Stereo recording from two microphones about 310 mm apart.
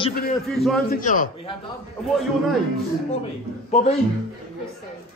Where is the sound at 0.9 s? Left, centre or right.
Left.